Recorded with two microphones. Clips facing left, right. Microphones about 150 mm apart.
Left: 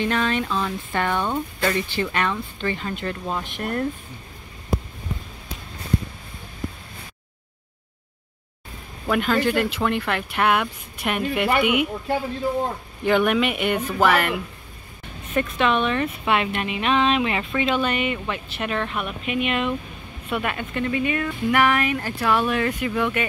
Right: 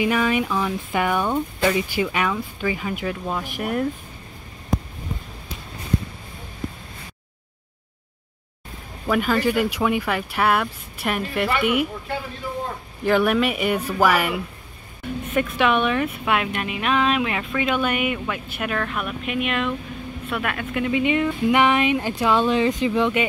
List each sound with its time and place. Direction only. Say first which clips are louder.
0.0 s speech: right 2 dB; 10° right (ahead or behind)
9.0 s speech: right 1 dB; 5° right (ahead or behind)
13.0 s speech: right 1 dB; centre (ahead or behind)
20.8 s speech: right 3 dB; 20° right (ahead or behind)